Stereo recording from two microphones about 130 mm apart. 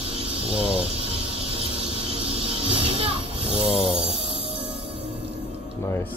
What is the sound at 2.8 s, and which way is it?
Music, 45° right (ahead or behind).